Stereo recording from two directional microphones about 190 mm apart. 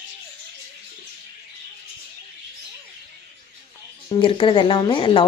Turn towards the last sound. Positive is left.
turn(degrees=25)  # may be behind; listen again after turning